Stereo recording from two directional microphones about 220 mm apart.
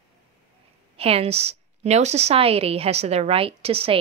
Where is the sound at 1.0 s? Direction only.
25° right (ahead or behind).